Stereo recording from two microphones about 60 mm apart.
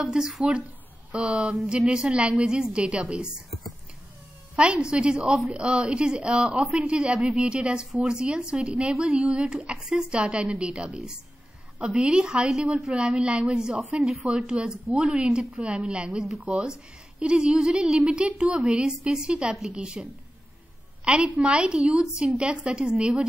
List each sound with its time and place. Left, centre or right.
0.0 s a woman's voice: centre
4.6 s a woman's voice: centre